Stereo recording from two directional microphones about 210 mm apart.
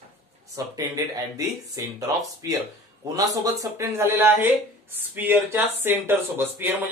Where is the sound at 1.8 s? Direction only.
15° right (ahead or behind).